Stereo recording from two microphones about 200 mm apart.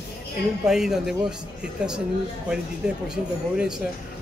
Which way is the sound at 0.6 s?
Centre (ahead or behind).